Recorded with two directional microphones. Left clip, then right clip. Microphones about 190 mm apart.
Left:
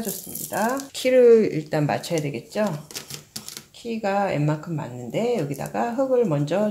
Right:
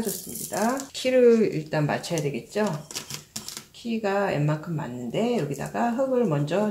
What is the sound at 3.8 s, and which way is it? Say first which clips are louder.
Speech: left 2 dB; 50° left (ahead or behind).